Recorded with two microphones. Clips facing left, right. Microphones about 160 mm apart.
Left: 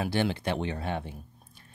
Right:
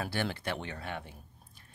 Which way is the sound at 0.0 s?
20° left (ahead or behind).